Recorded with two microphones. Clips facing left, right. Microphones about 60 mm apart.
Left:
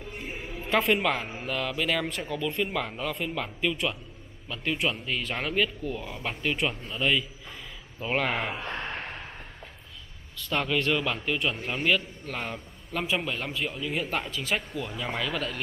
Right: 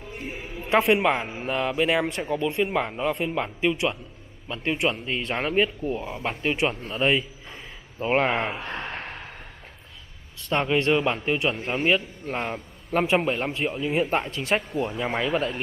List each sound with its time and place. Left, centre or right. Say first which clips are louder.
0.1 s a sound: right 3 dB; centre
0.7 s speech: right 4 dB; centre
1.0 s speech: right 5 dB; right
6.5 s speech: right 5 dB; centre
6.8 s a man's voice: right 4 dB; right
8.8 s gasp: right 1 dB; centre
10.5 s a man's voice: right 5 dB; right
15.0 s speech: right 5 dB; right